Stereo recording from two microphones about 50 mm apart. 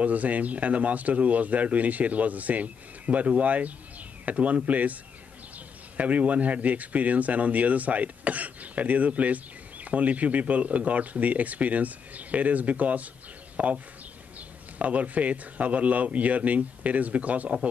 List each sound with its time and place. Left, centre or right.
0.0 s speech: right
5.9 s speech: right
14.8 s speech: right